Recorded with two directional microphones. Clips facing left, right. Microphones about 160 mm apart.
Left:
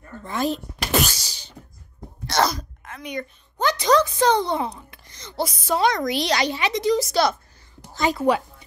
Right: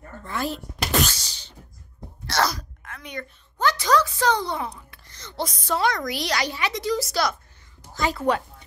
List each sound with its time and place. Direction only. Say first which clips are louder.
0.2 s speech: left 4 dB; 20° left (ahead or behind)
5.8 s a woman's voice: left 4 dB; 20° left (ahead or behind)